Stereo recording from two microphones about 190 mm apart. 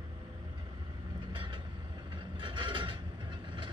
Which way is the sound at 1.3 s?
25° right (ahead or behind).